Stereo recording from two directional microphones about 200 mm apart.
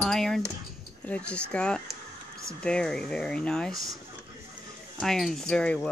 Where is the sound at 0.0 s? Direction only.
Centre (ahead or behind).